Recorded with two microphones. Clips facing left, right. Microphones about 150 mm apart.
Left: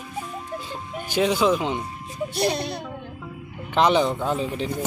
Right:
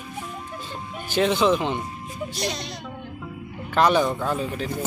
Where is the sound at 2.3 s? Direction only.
60° left (ahead or behind).